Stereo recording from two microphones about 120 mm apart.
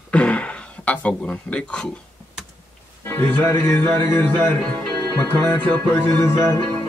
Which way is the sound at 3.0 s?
15° left (ahead or behind).